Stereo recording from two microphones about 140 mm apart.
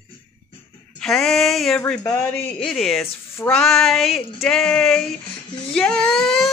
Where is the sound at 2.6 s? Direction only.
Centre (ahead or behind).